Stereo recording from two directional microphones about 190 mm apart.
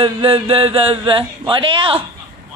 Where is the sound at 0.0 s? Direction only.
30° right (ahead or behind).